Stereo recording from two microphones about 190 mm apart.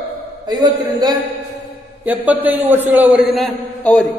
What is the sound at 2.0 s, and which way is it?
A man's voice, 10° right (ahead or behind).